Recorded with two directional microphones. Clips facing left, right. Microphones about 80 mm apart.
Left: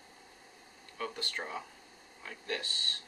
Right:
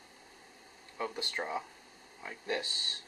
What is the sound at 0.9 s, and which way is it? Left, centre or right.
Speech, centre.